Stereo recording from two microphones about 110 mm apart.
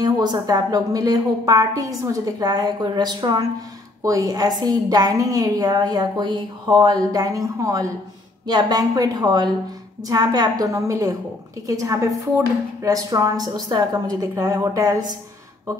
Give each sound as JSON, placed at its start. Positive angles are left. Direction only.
{"t": 0.0, "sound": "speech", "side_deg": -40}